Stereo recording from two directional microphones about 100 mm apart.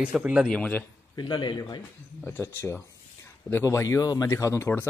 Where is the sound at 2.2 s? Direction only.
20° left (ahead or behind).